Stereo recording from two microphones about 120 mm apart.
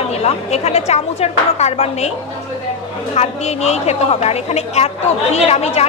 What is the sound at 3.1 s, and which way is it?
A woman's voice, 65° left (ahead or behind).